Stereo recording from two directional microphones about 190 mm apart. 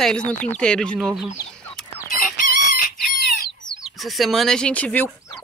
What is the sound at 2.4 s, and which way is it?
Chicken, 50° left (ahead or behind).